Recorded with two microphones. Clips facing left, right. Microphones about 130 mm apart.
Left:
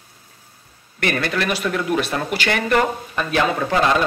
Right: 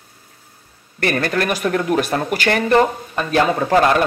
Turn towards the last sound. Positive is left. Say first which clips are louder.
# right 4 dB
turn(degrees=-40)  # may be behind; listen again after turning